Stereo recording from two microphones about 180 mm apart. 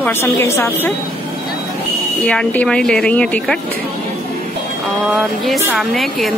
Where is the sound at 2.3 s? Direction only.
5° left (ahead or behind).